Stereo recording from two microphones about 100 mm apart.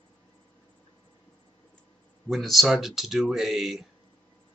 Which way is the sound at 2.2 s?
Centre (ahead or behind).